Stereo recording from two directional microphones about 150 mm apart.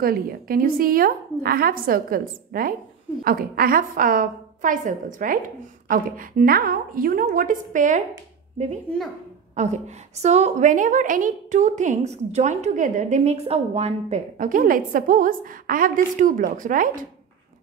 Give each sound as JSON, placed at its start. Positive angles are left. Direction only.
{"t": 0.0, "sound": "a woman's voice", "side_deg": -80}